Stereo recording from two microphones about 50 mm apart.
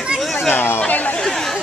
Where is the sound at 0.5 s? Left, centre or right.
Left.